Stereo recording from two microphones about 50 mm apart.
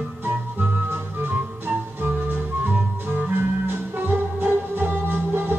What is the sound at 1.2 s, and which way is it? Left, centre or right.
Music, right.